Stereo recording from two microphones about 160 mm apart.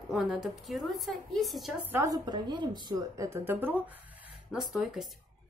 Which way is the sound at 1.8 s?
15° right (ahead or behind).